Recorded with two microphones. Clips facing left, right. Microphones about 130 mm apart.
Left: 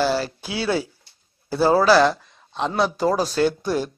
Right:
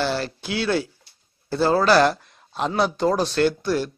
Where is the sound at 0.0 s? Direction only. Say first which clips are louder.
Left 3 dB; 10° left (ahead or behind).